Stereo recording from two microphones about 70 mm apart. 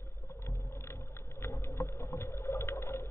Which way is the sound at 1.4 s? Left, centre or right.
Left.